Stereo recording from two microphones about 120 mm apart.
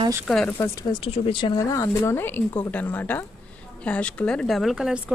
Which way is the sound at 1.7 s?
25° left (ahead or behind).